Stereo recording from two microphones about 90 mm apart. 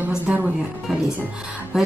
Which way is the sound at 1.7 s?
5° right (ahead or behind).